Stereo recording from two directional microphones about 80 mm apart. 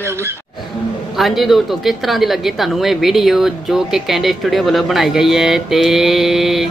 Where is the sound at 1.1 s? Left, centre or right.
Centre.